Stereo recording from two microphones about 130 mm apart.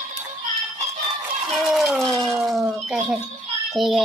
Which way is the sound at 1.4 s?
Centre (ahead or behind).